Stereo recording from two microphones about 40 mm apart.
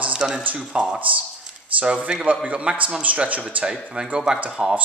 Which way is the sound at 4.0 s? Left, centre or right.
Right.